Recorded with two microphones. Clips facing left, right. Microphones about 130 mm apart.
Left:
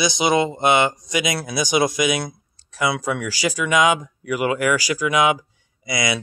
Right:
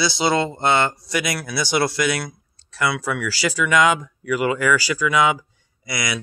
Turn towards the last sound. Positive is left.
turn(degrees=25)  # may be behind; listen again after turning